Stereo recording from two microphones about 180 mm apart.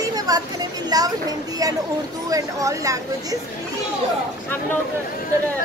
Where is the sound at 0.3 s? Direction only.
20° right (ahead or behind).